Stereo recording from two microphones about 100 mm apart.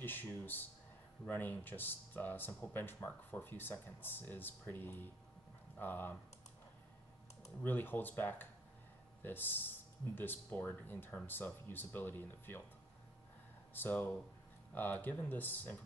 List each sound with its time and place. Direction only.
0.0 s speech: 20° left (ahead or behind)
7.6 s speech: 20° left (ahead or behind)
13.7 s speech: 20° left (ahead or behind)